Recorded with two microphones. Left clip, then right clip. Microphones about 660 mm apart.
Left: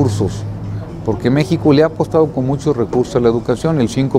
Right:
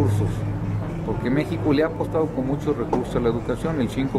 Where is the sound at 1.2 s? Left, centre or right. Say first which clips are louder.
Left 9 dB; left.